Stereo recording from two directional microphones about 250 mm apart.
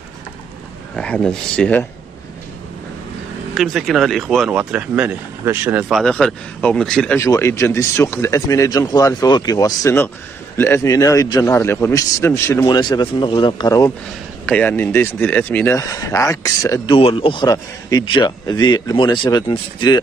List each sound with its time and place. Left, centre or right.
0.9 s speech: centre
3.5 s speech: centre